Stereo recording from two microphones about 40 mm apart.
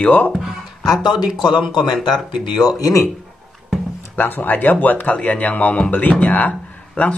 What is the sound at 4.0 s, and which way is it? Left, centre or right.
Speech, left.